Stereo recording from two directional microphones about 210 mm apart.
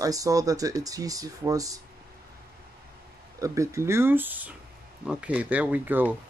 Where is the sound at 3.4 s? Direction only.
15° right (ahead or behind).